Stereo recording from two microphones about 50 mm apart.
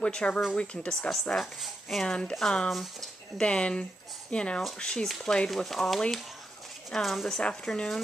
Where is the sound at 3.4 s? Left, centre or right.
Left.